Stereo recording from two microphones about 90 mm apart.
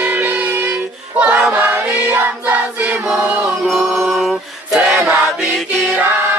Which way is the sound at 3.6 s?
5° left (ahead or behind).